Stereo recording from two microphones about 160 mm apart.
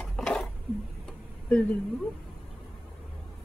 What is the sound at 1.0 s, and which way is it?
Tick-tock, 10° left (ahead or behind).